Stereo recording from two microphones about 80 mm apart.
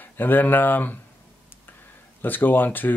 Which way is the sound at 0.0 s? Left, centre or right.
Left.